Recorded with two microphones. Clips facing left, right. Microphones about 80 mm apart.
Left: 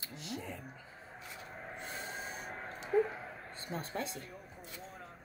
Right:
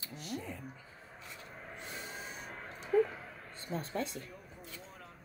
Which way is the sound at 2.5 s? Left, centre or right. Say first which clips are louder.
Right 2 dB; left.